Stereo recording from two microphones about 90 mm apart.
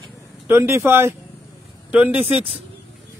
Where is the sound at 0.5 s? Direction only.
30° right (ahead or behind).